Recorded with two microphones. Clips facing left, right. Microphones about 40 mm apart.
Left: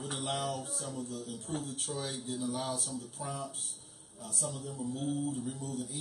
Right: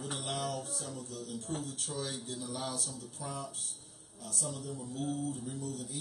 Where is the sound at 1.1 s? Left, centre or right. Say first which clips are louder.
Left 1 dB; left.